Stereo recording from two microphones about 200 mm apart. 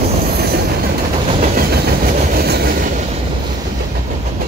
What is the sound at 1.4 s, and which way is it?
Train, 45° right (ahead or behind).